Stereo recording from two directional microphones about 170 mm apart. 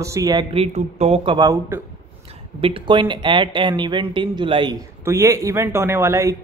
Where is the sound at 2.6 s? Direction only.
30° right (ahead or behind).